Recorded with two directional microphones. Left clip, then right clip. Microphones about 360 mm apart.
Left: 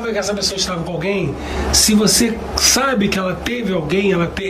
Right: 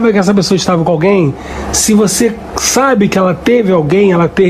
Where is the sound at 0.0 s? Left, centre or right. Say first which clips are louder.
Right 8 dB; centre.